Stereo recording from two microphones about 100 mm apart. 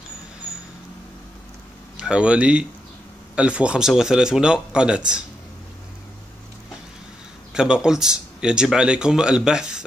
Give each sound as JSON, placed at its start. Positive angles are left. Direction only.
{"t": 2.0, "sound": "speech", "side_deg": -10}
{"t": 7.5, "sound": "speech", "side_deg": -5}